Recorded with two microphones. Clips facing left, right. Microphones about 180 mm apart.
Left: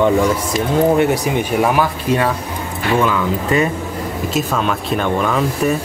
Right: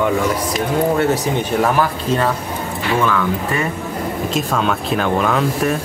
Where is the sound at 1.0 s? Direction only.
10° left (ahead or behind).